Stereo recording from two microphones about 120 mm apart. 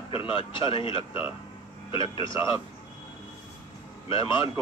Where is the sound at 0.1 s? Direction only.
45° left (ahead or behind).